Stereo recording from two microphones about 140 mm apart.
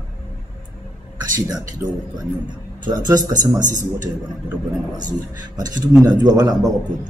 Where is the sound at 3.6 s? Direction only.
65° right (ahead or behind).